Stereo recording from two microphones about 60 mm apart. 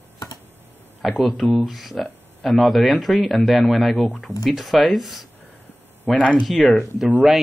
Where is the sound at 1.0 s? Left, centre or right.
Centre.